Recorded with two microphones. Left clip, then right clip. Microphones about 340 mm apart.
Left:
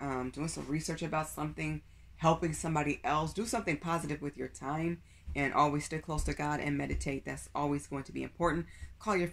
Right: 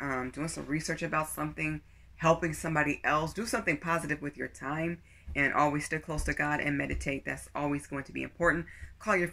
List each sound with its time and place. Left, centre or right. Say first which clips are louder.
0.0 s speech: right 3 dB; centre